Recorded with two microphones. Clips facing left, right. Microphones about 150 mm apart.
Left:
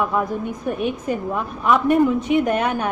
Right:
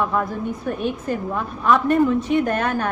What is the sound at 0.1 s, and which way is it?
A woman's voice, 15° left (ahead or behind).